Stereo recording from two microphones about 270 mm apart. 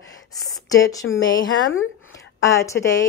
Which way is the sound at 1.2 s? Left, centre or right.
Left.